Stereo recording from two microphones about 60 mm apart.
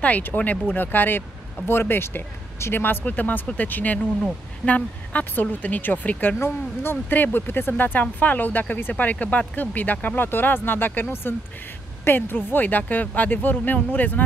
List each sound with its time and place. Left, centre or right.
0.0 s a woman's voice: left